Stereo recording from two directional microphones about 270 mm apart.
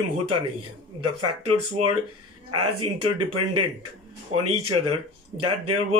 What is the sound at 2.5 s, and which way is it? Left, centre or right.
Speech, right.